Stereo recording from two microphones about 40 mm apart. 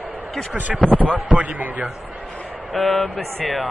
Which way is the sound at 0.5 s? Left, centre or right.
Right.